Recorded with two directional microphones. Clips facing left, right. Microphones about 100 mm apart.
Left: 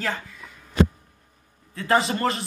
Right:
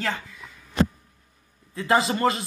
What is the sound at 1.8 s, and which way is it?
Speech, 15° right (ahead or behind).